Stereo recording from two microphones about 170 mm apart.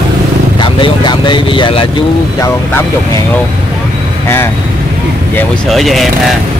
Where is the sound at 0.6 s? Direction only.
25° left (ahead or behind).